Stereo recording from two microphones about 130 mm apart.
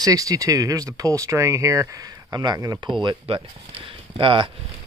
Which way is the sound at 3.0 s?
40° right (ahead or behind).